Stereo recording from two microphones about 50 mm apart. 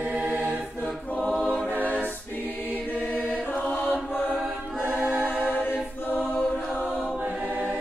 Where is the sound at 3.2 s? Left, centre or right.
Left.